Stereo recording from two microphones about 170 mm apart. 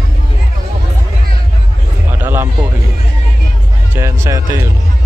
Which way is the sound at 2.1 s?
15° right (ahead or behind).